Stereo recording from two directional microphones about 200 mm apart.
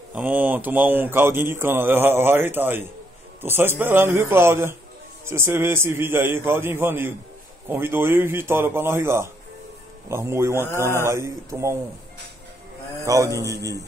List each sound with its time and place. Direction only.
0.1 s speech: 10° right (ahead or behind)
13.0 s speech: 15° right (ahead or behind)